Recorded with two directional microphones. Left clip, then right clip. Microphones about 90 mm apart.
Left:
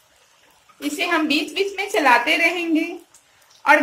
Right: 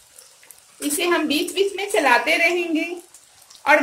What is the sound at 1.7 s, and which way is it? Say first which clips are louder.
Speech: left 2 dB; 75° right (ahead or behind).